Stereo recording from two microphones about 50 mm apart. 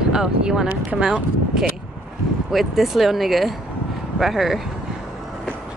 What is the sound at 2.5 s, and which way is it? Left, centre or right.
Speech, centre.